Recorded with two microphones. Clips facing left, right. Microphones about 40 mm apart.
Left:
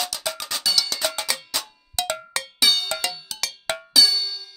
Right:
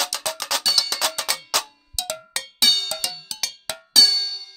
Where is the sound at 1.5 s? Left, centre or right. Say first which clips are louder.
Right 5 dB; right.